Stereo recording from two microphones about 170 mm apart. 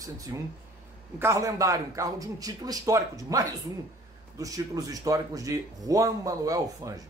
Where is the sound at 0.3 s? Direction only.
20° right (ahead or behind).